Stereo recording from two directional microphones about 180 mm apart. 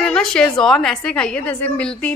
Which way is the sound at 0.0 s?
5° left (ahead or behind).